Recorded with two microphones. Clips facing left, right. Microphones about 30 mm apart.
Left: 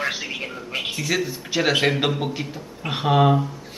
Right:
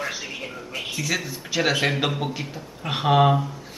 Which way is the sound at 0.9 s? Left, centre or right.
Centre.